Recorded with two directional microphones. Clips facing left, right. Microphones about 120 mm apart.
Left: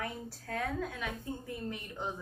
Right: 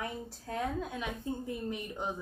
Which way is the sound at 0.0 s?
20° right (ahead or behind).